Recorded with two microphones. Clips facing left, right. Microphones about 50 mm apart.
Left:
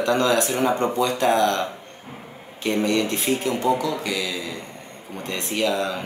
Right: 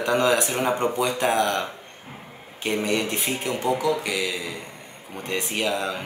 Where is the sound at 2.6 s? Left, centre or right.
Centre.